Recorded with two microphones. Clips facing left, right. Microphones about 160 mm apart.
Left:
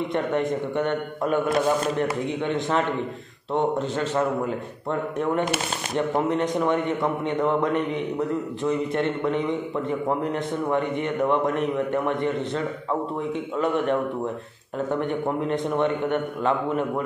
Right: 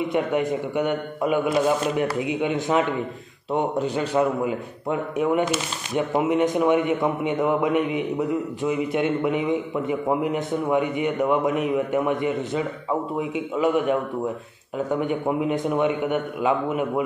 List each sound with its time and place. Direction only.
0.1 s a man's voice: 5° right (ahead or behind)